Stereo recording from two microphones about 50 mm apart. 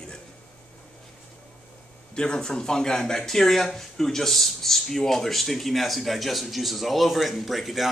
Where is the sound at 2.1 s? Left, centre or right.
Centre.